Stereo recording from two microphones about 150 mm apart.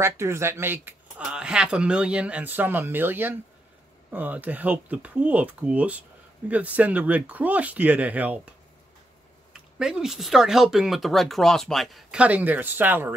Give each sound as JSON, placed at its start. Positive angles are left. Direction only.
{"t": 0.0, "sound": "speech", "side_deg": -20}
{"t": 9.5, "sound": "speech", "side_deg": -5}